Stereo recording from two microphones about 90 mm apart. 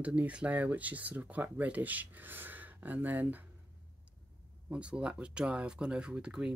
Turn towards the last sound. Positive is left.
turn(degrees=-10)  # may be behind; listen again after turning